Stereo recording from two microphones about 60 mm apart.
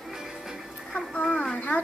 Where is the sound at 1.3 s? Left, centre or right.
Centre.